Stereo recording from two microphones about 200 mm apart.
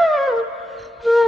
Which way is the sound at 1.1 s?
Centre (ahead or behind).